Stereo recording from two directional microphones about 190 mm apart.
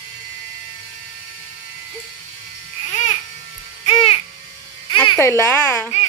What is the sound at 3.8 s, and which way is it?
Music, 30° left (ahead or behind).